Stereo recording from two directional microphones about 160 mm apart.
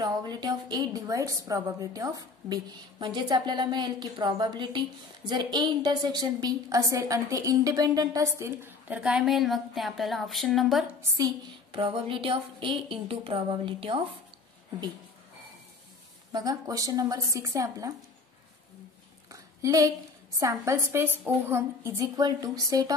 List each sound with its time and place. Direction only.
0.0 s a woman's voice: 25° right (ahead or behind); by 10.9 s centre (ahead or behind)
11.0 s speech: 20° right (ahead or behind)
11.8 s a woman's voice: 35° right (ahead or behind)
16.3 s a woman's voice: 25° right (ahead or behind)
19.3 s a sound: 20° right (ahead or behind)
20.3 s a woman's voice: 20° right (ahead or behind)